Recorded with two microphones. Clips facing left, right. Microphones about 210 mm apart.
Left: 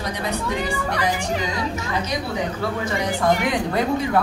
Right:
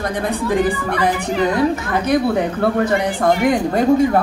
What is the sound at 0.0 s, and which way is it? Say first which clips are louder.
A woman's voice: right 5 dB; 50° right (ahead or behind).